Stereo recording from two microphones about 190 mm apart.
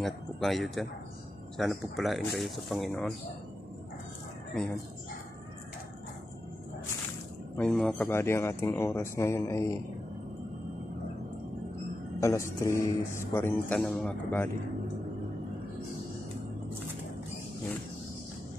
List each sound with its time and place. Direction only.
0.0 s speech: centre (ahead or behind)
7.5 s speech: 5° left (ahead or behind)
12.2 s speech: 15° left (ahead or behind)